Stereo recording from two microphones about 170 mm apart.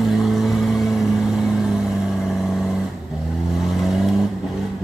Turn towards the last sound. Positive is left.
turn(degrees=0)  # may be behind; listen again after turning